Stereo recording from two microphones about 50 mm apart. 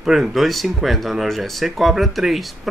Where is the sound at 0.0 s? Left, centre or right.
Centre.